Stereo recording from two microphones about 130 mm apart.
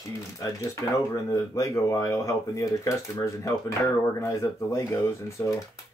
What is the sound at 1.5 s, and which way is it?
Speech, 20° left (ahead or behind).